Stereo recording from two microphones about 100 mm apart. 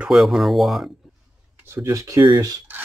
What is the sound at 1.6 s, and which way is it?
Speech, 25° right (ahead or behind).